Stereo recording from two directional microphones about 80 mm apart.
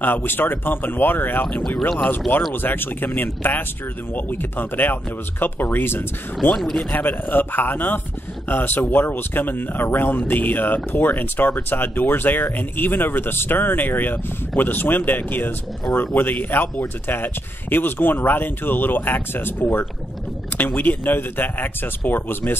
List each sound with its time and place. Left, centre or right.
0.0 s speech: left
1.7 s speech: centre
2.0 s speech: left
6.5 s speech: centre
6.9 s speech: left